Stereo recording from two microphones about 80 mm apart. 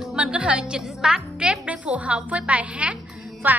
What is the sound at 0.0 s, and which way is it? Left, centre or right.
A woman's voice, centre.